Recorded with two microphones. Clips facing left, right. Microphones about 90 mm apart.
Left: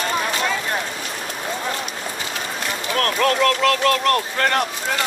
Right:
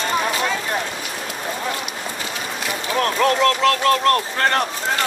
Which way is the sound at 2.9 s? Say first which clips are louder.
Right 1 dB; 20° right (ahead or behind).